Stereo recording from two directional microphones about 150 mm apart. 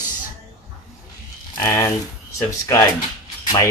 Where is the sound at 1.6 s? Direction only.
20° left (ahead or behind).